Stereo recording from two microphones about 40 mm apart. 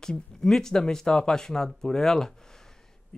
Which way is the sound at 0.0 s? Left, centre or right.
Centre.